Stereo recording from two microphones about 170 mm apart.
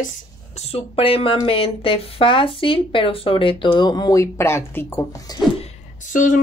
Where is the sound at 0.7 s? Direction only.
35° left (ahead or behind).